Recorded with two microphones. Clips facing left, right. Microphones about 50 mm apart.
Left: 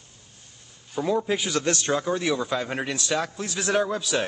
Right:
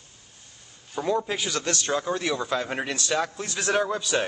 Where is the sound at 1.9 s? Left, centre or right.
Centre.